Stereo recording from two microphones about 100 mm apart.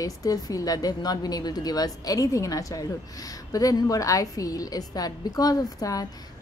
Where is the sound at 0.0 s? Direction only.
35° left (ahead or behind).